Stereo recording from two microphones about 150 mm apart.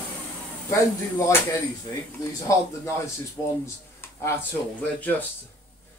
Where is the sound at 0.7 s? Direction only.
20° left (ahead or behind).